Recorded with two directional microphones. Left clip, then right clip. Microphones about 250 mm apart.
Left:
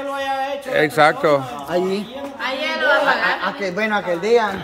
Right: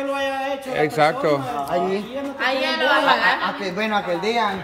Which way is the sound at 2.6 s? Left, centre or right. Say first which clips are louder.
Left 3 dB; right.